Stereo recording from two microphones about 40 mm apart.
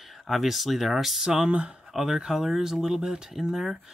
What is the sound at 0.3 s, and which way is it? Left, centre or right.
Speech, centre.